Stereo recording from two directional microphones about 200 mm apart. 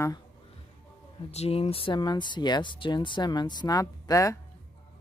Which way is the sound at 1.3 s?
30° left (ahead or behind).